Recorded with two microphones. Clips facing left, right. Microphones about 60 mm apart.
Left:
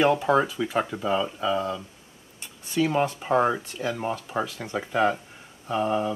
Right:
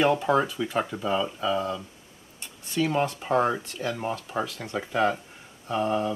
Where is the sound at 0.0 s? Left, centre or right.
Centre.